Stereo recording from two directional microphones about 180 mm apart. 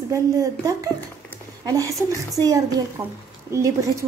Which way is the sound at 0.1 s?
20° right (ahead or behind).